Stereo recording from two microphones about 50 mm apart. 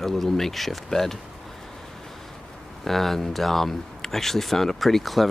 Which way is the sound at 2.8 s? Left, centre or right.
Centre.